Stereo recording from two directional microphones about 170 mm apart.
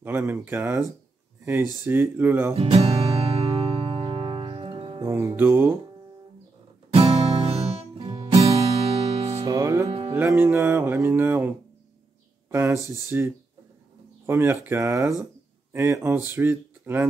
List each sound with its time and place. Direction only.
0.0 s speech: 15° right (ahead or behind)
2.5 s music: 35° right (ahead or behind)
5.0 s speech: 15° right (ahead or behind)
6.9 s music: 35° right (ahead or behind)
9.4 s music: 20° right (ahead or behind)
9.8 s music: 35° right (ahead or behind)
10.1 s speech: 15° right (ahead or behind)
12.4 s a sound: 15° right (ahead or behind)
13.1 s speech: 10° right (ahead or behind)